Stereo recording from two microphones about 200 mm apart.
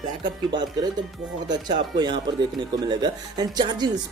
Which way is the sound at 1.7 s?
20° right (ahead or behind).